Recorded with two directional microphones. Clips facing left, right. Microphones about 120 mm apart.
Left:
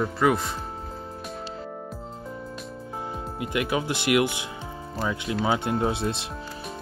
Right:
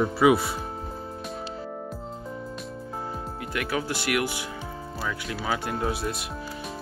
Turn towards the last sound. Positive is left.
turn(degrees=25)  # may be behind; listen again after turning